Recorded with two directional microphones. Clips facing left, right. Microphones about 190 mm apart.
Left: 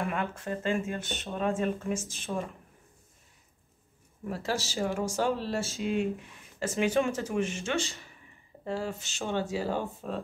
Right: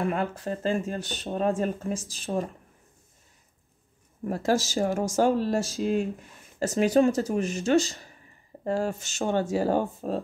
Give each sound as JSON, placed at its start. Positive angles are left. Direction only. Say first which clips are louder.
{"t": 0.0, "sound": "speech", "louder": "right 5 dB", "side_deg": -35}
{"t": 4.3, "sound": "speech", "louder": "right 7 dB", "side_deg": -45}